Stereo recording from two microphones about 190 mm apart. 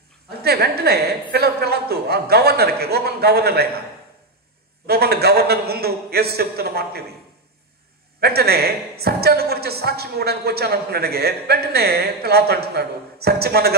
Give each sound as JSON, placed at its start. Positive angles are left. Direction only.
{"t": 0.3, "sound": "a woman's voice", "side_deg": -55}
{"t": 4.8, "sound": "a woman's voice", "side_deg": -55}
{"t": 8.2, "sound": "a woman's voice", "side_deg": -55}